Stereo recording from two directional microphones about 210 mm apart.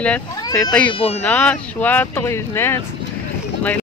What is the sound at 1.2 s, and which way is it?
Speech, 5° left (ahead or behind).